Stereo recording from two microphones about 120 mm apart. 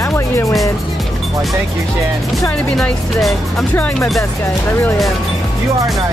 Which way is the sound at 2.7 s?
5° left (ahead or behind).